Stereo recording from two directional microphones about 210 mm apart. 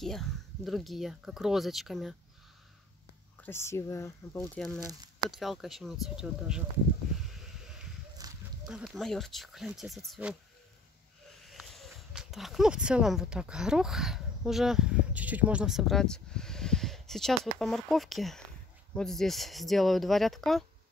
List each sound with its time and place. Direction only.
0.0 s speech: centre (ahead or behind)
3.3 s speech: 10° left (ahead or behind)
4.7 s speech: 15° right (ahead or behind)
5.2 s speech: centre (ahead or behind)
7.6 s a sound: centre (ahead or behind)
8.2 s a sound: 15° right (ahead or behind)
8.6 s speech: 5° right (ahead or behind)
11.4 s speech: centre (ahead or behind)